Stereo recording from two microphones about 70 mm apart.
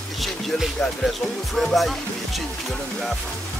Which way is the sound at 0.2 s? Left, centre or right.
Centre.